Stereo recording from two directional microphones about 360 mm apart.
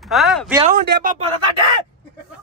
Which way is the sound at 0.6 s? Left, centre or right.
Right.